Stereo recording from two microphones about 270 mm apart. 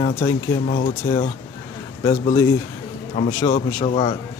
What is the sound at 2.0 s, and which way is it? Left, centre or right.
Speech, centre.